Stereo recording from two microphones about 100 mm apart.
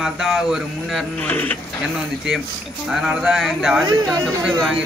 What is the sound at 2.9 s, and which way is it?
Speech, 5° right (ahead or behind).